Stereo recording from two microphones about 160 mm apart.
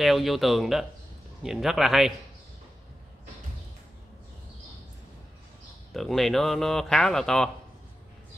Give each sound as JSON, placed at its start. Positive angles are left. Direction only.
{"t": 0.0, "sound": "speech", "side_deg": 0}
{"t": 5.9, "sound": "speech", "side_deg": 0}